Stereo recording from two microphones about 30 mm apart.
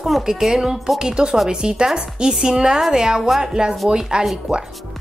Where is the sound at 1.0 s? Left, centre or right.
Right.